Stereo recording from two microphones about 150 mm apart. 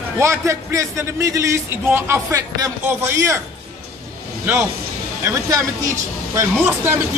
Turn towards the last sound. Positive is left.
turn(degrees=-15)  # may be behind; listen again after turning